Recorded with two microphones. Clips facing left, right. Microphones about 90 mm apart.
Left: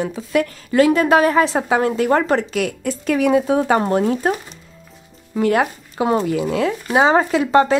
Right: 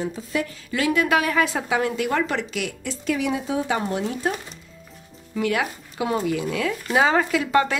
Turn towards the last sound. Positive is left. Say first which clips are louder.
# left 5 dB
turn(degrees=30)  # may be behind; listen again after turning